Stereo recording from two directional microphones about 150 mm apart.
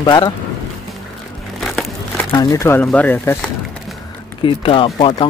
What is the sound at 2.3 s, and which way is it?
Speech, 25° left (ahead or behind).